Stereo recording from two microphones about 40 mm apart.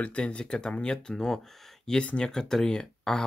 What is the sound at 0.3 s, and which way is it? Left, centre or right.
Speech, left.